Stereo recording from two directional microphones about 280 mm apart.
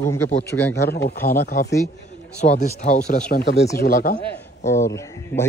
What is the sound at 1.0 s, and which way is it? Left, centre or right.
Speech, left.